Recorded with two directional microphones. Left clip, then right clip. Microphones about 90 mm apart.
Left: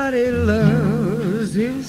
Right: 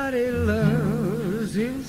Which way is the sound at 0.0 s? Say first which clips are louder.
Left 5 dB; 30° right (ahead or behind).